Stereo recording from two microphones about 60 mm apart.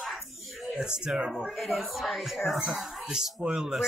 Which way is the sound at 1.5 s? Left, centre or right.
Centre.